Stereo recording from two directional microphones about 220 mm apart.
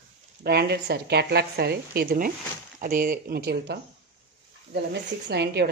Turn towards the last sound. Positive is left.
turn(degrees=-50)  # may be behind; listen again after turning